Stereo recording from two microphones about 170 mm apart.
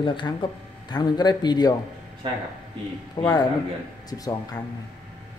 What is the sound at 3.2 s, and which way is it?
A man's voice, 25° left (ahead or behind).